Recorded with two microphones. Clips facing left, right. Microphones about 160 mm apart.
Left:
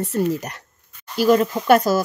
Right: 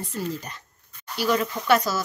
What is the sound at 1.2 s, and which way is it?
Speech, 40° left (ahead or behind).